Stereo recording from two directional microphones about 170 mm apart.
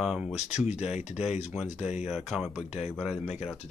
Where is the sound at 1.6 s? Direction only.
40° left (ahead or behind).